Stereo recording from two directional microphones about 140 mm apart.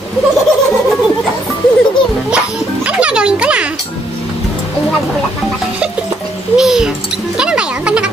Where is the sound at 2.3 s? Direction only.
10° right (ahead or behind).